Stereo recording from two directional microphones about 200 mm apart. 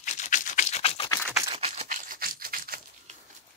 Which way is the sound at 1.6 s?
30° right (ahead or behind).